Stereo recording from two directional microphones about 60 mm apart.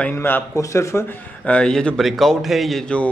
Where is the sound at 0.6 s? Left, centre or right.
Left.